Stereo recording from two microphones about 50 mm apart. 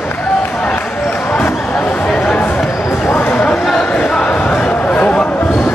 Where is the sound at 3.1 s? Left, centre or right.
Left.